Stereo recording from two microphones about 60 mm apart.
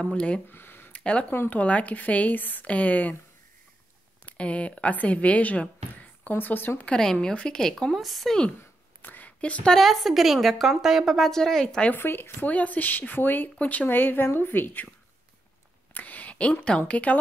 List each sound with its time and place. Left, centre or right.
0.0 s speech: centre
0.5 s a sound: left
0.9 s a sound: centre
1.5 s speech: left
4.4 s a woman's voice: left
7.0 s speech: centre
7.8 s a woman's voice: centre
9.0 s a sound: left
9.4 s speech: left
9.7 s a woman's voice: centre
11.9 s a woman's voice: left
12.4 s a woman's voice: left
15.9 s a sound: left
16.6 s speech: centre